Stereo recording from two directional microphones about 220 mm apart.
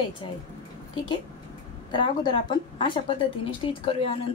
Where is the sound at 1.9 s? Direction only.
20° left (ahead or behind).